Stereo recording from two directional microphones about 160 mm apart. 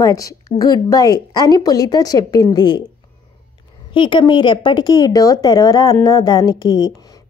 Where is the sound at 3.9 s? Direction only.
30° left (ahead or behind).